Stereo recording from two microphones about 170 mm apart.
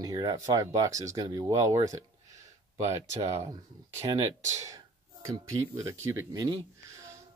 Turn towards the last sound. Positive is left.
turn(degrees=-20)  # may be behind; listen again after turning